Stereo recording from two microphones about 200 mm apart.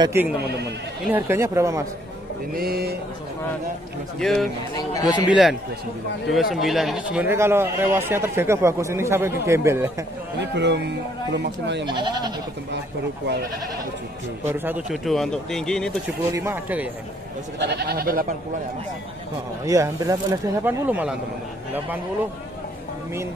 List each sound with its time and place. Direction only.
0.0 s speech: 15° right (ahead or behind)
0.4 s speech: 55° right (ahead or behind)
1.0 s speech: 10° right (ahead or behind)
2.5 s speech: 50° right (ahead or behind)
4.2 s speech: centre (ahead or behind)
4.7 s a man's voice: 20° left (ahead or behind)
5.3 s speech: centre (ahead or behind)
10.4 s speech: 60° right (ahead or behind)
11.8 s speech: 25° right (ahead or behind)
14.5 s speech: 10° right (ahead or behind)
15.0 s speech: centre (ahead or behind)
16.3 s speech: 15° right (ahead or behind)
17.6 s speech: 55° right (ahead or behind)
19.6 s speech: 15° right (ahead or behind)